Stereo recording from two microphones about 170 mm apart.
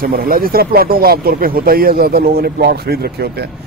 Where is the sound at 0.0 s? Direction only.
60° right (ahead or behind).